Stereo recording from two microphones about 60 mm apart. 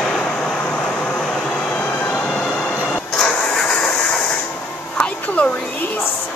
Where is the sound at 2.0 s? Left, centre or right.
Left.